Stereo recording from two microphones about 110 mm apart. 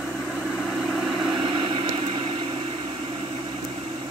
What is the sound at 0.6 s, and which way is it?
Vehicle, 5° right (ahead or behind).